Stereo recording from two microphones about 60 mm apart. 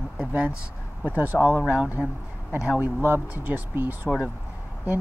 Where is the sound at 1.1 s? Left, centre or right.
Right.